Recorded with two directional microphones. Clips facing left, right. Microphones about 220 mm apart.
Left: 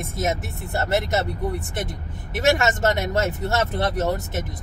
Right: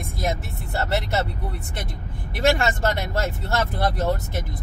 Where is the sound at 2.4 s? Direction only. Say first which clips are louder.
Left 1 dB; 20° left (ahead or behind).